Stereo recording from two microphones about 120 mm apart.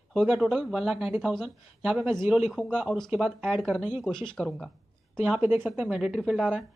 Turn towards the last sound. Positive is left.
turn(degrees=-5)  # may be behind; listen again after turning